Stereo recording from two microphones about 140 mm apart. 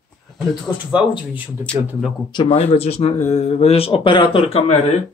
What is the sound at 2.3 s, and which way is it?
Speech, 45° left (ahead or behind).